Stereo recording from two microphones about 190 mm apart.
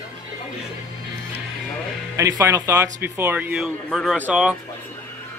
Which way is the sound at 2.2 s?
15° right (ahead or behind).